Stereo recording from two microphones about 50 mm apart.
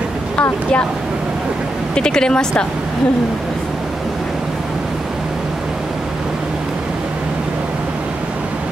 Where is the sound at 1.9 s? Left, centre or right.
Centre.